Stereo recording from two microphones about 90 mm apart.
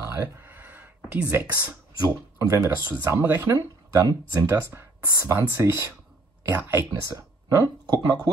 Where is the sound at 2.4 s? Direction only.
35° right (ahead or behind).